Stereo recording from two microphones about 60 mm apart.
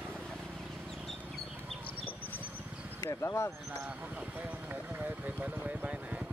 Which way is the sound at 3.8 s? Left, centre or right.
Right.